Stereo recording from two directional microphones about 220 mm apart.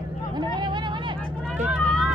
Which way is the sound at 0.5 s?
20° right (ahead or behind).